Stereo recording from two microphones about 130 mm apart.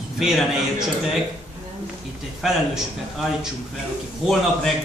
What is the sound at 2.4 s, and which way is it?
A man's voice, 5° right (ahead or behind).